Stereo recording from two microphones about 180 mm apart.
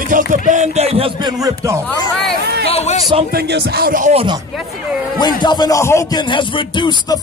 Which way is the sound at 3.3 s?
65° right (ahead or behind).